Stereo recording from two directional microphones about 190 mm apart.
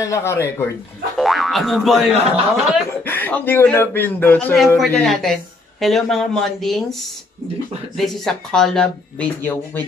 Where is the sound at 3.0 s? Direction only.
10° left (ahead or behind).